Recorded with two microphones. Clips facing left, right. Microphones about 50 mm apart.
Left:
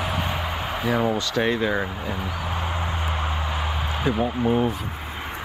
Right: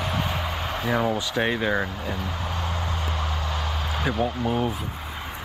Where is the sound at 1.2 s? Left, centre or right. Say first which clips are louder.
Left 2 dB; centre.